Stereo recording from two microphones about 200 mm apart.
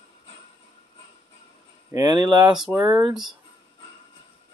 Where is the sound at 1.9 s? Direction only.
20° right (ahead or behind).